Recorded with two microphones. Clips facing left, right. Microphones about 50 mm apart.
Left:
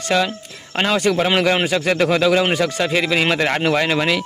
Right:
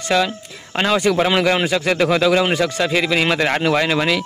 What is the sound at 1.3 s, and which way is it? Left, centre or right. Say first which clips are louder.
Speech: even; centre.